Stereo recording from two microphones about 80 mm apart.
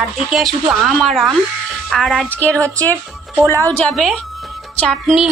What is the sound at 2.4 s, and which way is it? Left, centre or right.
Speech, right.